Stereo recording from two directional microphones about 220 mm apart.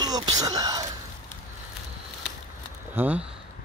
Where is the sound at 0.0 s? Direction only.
20° right (ahead or behind).